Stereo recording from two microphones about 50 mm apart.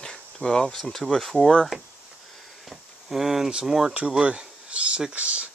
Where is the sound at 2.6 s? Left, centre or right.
Centre.